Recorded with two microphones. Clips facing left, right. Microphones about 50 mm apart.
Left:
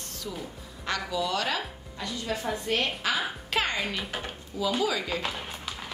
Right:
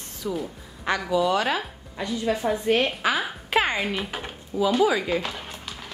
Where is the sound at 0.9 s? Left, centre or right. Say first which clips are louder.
Right 7 dB; right.